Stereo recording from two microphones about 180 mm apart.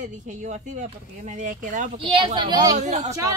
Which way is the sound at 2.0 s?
30° right (ahead or behind).